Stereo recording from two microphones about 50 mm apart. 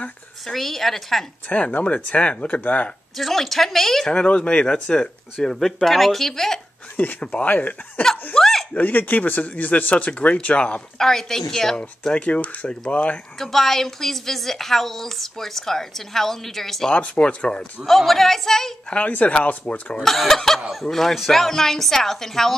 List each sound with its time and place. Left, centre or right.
0.5 s speech: centre
1.5 s speech: left
3.2 s speech: centre
4.1 s a woman's voice: left; by 6.6 s centre
7.0 s speech: left
8.4 s speech: centre
8.7 s speech: left
11.0 s a woman's voice: centre; by 13.2 s left
13.4 s a woman's voice: centre
16.9 s speech: left
17.8 s speech: centre
18.9 s speech: left
20.0 s a woman's voice: centre